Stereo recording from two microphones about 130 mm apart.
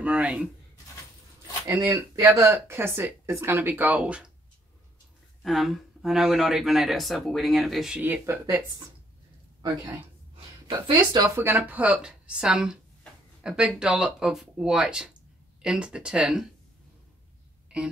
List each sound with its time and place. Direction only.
0.0 s speech: 10° right (ahead or behind)
1.7 s speech: 15° right (ahead or behind)
5.4 s speech: centre (ahead or behind)
8.0 s speech: 15° right (ahead or behind)
10.9 s speech: 25° right (ahead or behind); by 16.4 s 5° right (ahead or behind)